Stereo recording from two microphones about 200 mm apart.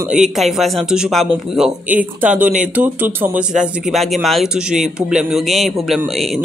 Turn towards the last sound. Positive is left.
turn(degrees=0)  # may be behind; listen again after turning